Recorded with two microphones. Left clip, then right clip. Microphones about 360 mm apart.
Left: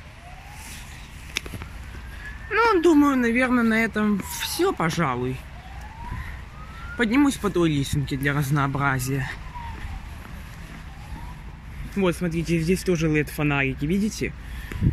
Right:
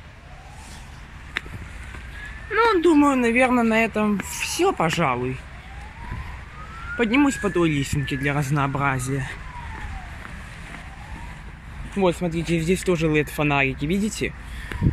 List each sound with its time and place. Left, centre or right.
2.5 s speech: centre
7.0 s speech: centre
12.0 s speech: centre
14.7 s a sound: centre